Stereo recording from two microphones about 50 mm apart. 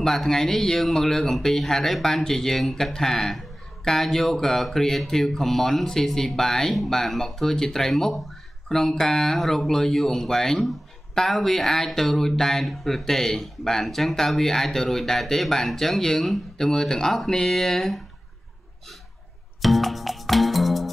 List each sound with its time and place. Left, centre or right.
0.0 s speech: centre
19.6 s music: centre